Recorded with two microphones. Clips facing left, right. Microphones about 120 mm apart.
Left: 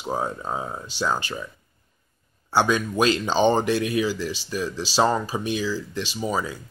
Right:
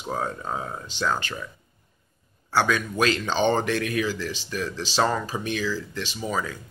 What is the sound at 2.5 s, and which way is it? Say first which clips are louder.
Speech: left 2 dB; 20° left (ahead or behind).